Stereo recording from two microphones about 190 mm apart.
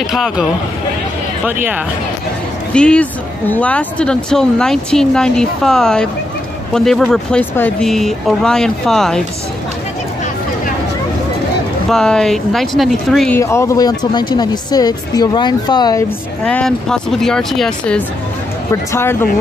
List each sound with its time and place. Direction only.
0.0 s speech: centre (ahead or behind)
2.7 s speech: 5° left (ahead or behind)
11.9 s speech: 5° left (ahead or behind)
13.4 s speech: 15° left (ahead or behind)
16.4 s speech: 5° left (ahead or behind)